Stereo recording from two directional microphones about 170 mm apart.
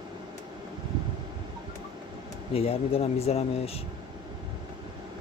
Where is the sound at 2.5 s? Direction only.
35° left (ahead or behind).